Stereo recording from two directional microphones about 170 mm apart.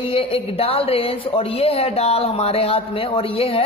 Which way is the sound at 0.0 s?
35° left (ahead or behind).